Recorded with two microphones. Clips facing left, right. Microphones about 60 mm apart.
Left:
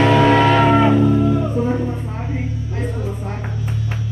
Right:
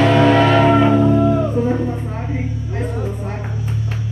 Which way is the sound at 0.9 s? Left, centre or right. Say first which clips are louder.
Right 1 dB; right.